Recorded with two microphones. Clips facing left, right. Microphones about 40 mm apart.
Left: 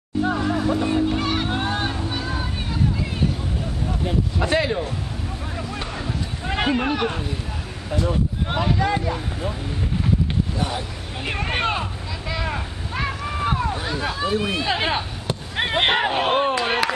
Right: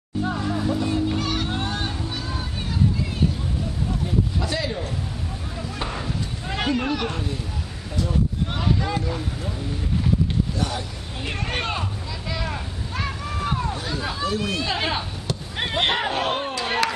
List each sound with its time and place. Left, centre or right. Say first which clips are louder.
0.2 s music: left 4 dB; centre
4.0 s a sound: left 3 dB; left
6.0 s a sound: left 2 dB; centre
7.9 s speech: left 2 dB; left
11.2 s vehicle: left 4 dB; centre
16.3 s chop: left 5 dB; left